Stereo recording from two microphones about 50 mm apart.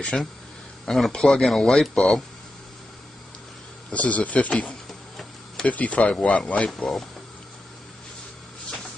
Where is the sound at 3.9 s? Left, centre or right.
Left.